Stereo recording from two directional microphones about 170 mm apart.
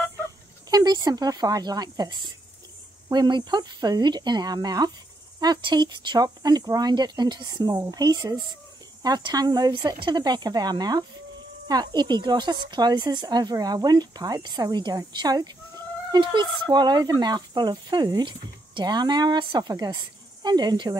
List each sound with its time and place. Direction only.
0.7 s speech: 25° right (ahead or behind)